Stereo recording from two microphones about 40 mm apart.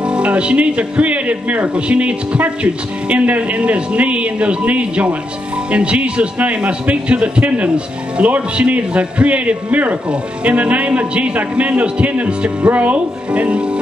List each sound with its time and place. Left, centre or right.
0.0 s a man's voice: right